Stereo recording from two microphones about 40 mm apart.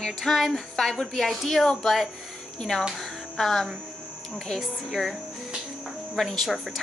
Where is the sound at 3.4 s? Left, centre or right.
Centre.